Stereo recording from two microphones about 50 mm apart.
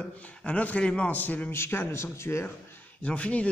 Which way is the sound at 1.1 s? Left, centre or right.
Left.